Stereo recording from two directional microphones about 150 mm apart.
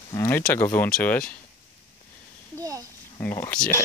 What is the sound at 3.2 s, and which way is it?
Speech, 20° left (ahead or behind).